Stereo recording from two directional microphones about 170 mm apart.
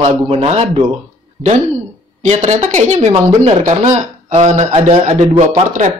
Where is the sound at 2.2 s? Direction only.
40° right (ahead or behind).